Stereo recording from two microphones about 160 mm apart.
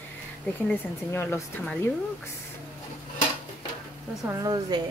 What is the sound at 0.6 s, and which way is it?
Speech, 10° left (ahead or behind).